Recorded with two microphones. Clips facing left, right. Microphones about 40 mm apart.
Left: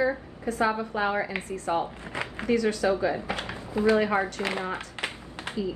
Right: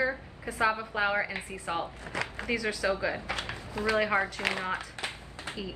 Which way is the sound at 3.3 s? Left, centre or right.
Left.